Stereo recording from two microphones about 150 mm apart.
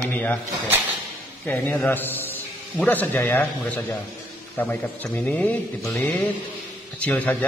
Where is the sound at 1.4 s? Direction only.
15° left (ahead or behind).